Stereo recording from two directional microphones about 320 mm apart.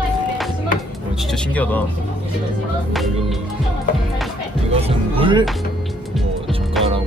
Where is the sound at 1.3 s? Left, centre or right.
Centre.